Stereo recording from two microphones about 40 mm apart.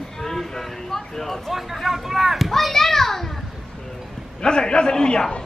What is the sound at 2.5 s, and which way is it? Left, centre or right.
Children playing, centre.